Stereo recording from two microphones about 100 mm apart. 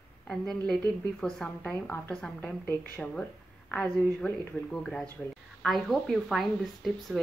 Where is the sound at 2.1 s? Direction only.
10° left (ahead or behind).